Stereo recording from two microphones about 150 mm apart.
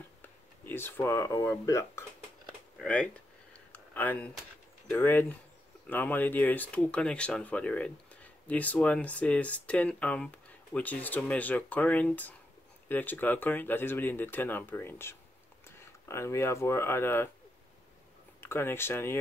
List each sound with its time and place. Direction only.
0.2 s speech: 15° left (ahead or behind)
2.8 s speech: 5° left (ahead or behind)
3.7 s a sound: 10° left (ahead or behind)
4.9 s speech: 15° left (ahead or behind)
18.4 s speech: 15° left (ahead or behind)